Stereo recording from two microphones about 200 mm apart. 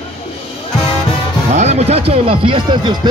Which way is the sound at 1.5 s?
35° right (ahead or behind).